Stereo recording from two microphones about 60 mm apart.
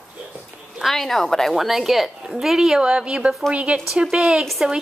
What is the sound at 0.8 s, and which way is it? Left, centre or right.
Speech, centre.